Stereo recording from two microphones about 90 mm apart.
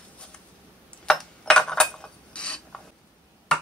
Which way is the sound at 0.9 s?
10° left (ahead or behind).